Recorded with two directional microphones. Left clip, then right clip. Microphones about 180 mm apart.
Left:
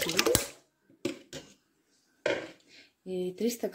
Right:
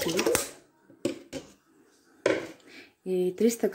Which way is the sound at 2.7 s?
5° right (ahead or behind).